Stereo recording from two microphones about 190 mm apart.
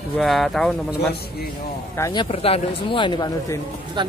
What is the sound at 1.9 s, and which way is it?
Speech, 15° left (ahead or behind).